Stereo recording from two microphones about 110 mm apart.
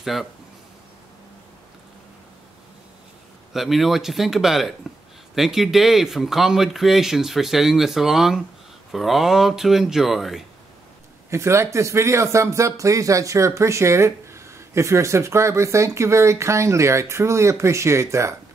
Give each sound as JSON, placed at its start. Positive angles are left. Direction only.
{"t": 0.0, "sound": "speech", "side_deg": 0}
{"t": 3.5, "sound": "speech", "side_deg": 0}
{"t": 11.2, "sound": "speech", "side_deg": -25}